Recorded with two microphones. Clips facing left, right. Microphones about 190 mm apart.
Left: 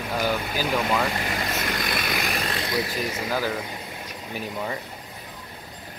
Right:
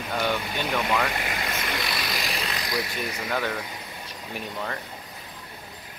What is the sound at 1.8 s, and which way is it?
Vehicle, 55° left (ahead or behind).